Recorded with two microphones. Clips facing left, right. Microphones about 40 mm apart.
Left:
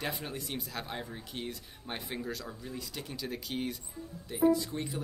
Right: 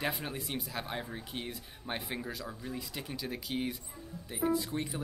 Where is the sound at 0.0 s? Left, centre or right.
Centre.